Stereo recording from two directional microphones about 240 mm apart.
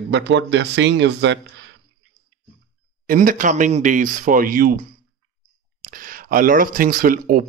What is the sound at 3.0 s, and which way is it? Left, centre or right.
Speech, right.